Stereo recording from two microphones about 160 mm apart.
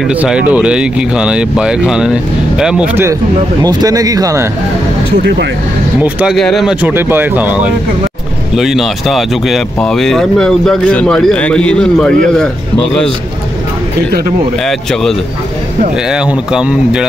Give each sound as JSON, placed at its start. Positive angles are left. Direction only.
{"t": 0.1, "sound": "speech", "side_deg": -10}
{"t": 3.6, "sound": "speech", "side_deg": -25}
{"t": 5.1, "sound": "speech", "side_deg": -90}
{"t": 5.9, "sound": "speech", "side_deg": -10}
{"t": 14.7, "sound": "speech", "side_deg": 5}